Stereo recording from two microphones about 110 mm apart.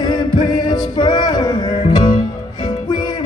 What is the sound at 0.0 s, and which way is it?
Music, 40° left (ahead or behind).